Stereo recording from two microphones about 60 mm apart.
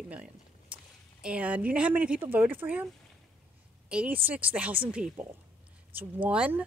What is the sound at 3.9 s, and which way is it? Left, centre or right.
A woman's voice, centre.